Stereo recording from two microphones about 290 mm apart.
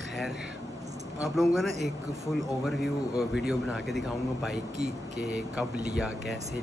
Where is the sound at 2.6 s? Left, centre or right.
Centre.